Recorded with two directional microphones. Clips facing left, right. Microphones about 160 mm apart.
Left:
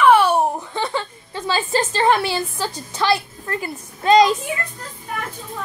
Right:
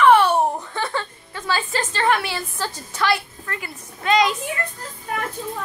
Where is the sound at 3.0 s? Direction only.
30° left (ahead or behind).